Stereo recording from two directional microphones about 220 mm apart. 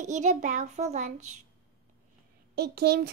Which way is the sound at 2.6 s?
45° right (ahead or behind).